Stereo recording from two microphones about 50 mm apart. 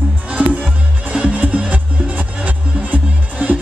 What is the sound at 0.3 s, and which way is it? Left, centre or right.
Music, right.